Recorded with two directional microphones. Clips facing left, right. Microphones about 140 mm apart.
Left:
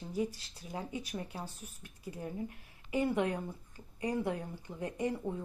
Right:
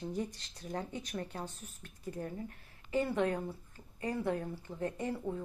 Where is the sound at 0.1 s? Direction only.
10° left (ahead or behind).